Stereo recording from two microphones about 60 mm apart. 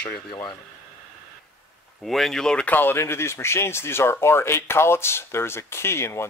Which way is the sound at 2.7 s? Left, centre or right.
Left.